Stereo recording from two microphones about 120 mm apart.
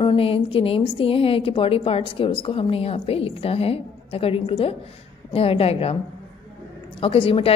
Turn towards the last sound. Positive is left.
turn(degrees=55)  # may be behind; listen again after turning